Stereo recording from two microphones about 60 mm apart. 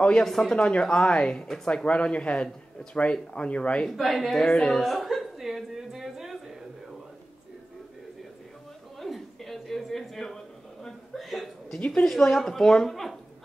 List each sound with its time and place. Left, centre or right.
0.0 s a man's voice: centre
1.9 s a man's voice: centre
3.9 s chuckle: centre
9.0 s a sound: centre
11.9 s speech: centre